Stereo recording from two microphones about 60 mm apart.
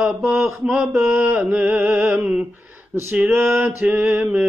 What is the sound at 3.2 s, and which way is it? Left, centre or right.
Mantra, right.